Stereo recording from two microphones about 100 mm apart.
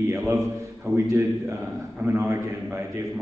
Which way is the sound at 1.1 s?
25° right (ahead or behind).